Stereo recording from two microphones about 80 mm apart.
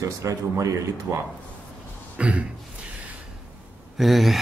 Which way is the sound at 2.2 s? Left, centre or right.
Centre.